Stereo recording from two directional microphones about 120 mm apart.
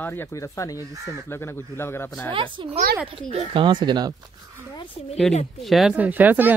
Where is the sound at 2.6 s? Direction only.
45° right (ahead or behind).